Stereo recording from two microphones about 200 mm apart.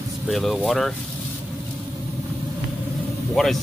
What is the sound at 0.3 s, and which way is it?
Speech, centre (ahead or behind).